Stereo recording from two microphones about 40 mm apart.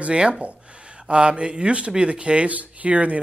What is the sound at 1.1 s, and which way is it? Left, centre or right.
A man's voice, right.